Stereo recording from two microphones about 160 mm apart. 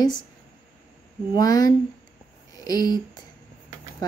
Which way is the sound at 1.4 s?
20° left (ahead or behind).